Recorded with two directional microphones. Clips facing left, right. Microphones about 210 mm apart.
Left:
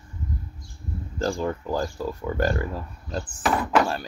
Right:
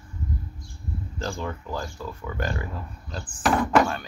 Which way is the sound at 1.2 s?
40° left (ahead or behind).